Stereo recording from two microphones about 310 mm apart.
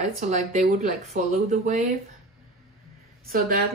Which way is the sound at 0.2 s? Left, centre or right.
Right.